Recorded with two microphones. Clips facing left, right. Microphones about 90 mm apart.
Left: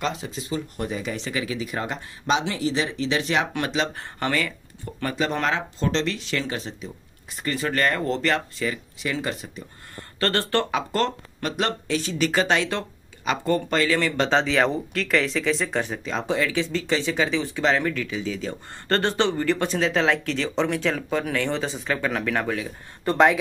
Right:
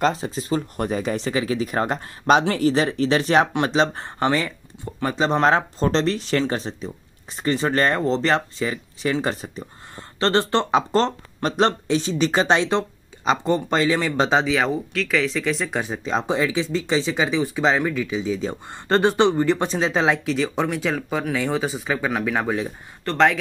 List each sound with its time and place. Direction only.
0.0 s speech: 40° right (ahead or behind)
5.5 s speech: 40° right (ahead or behind)
10.2 s speech: 20° right (ahead or behind); by 15.8 s centre (ahead or behind)
15.8 s speech: 20° right (ahead or behind)
23.0 s speech: 10° left (ahead or behind)